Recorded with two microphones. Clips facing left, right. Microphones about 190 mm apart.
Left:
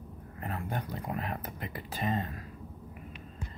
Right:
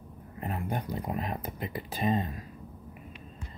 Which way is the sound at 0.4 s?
20° right (ahead or behind).